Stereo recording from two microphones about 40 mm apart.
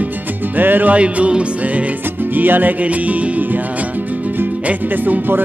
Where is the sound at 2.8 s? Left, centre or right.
Right.